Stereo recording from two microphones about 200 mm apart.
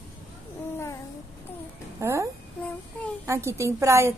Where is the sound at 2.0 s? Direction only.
15° right (ahead or behind).